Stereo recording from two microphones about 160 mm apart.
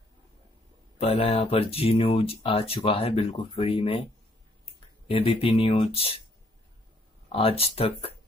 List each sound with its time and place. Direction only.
0.9 s speech: 40° left (ahead or behind)
5.0 s speech: 35° left (ahead or behind)
7.3 s speech: 35° left (ahead or behind)